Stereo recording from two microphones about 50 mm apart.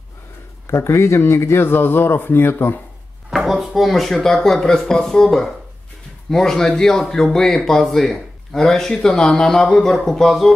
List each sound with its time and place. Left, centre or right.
0.7 s speech: left
3.3 s speech: centre